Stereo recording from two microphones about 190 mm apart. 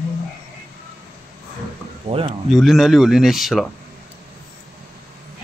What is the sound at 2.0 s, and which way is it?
Speech, 30° right (ahead or behind).